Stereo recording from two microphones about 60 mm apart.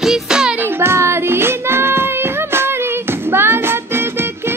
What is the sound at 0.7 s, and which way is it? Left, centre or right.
Child singing, right.